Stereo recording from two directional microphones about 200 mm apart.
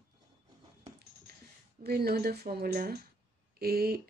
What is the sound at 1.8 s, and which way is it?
Speech, 50° right (ahead or behind).